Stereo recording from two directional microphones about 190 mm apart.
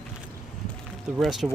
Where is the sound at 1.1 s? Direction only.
Centre (ahead or behind).